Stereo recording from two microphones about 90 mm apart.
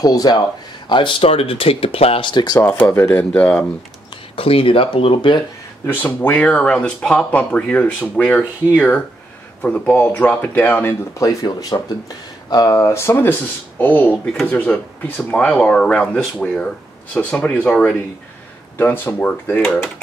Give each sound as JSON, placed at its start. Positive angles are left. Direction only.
{"t": 0.0, "sound": "speech", "side_deg": 45}
{"t": 0.8, "sound": "speech", "side_deg": 65}
{"t": 2.6, "sound": "speech", "side_deg": 25}
{"t": 4.4, "sound": "speech", "side_deg": 90}
{"t": 5.9, "sound": "speech", "side_deg": 20}
{"t": 9.6, "sound": "speech", "side_deg": 15}
{"t": 11.1, "sound": "speech", "side_deg": 45}
{"t": 12.9, "sound": "speech", "side_deg": 25}
{"t": 18.8, "sound": "speech", "side_deg": 20}
{"t": 19.6, "sound": "speech", "side_deg": 5}